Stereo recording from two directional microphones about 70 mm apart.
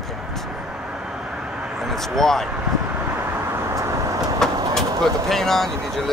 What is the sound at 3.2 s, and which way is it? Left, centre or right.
Vehicle, right.